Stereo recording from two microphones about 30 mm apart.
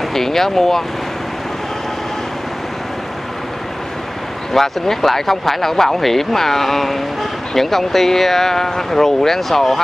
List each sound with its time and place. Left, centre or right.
0.1 s speech: centre
4.6 s speech: centre